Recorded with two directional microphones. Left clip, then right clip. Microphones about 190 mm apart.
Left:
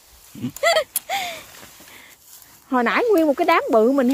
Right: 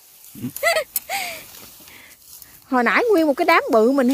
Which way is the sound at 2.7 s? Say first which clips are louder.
Right 1 dB; 15° right (ahead or behind).